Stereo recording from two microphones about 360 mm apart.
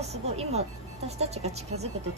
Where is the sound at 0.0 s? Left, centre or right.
Centre.